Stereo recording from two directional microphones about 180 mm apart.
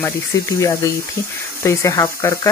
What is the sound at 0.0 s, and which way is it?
Speech, 15° left (ahead or behind).